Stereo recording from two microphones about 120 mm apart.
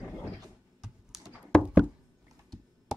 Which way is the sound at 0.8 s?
Centre (ahead or behind).